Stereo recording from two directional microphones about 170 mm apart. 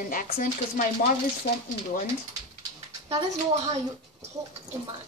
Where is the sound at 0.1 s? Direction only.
50° left (ahead or behind).